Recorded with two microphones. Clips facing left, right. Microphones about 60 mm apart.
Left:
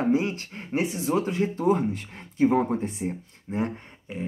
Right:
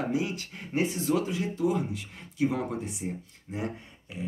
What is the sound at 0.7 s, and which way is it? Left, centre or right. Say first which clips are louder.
Speech: left 2 dB; left.